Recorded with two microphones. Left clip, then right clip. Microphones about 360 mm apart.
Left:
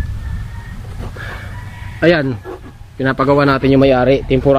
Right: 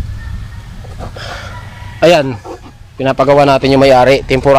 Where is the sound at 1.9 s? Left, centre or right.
Centre.